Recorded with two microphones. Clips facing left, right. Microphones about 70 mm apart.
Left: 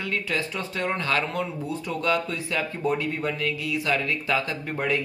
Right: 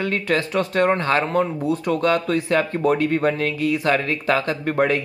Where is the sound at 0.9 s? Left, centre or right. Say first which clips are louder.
Right 7 dB; right.